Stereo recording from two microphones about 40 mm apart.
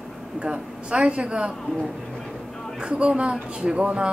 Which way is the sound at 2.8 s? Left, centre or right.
Right.